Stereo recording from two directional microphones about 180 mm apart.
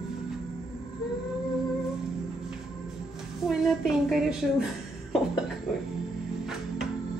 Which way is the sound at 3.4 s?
Centre (ahead or behind).